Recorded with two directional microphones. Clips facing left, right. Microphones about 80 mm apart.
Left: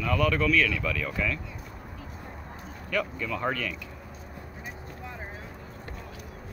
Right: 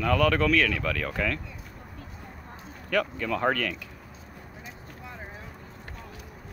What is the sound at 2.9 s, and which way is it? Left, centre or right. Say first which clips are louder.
Speech: right 3 dB; right.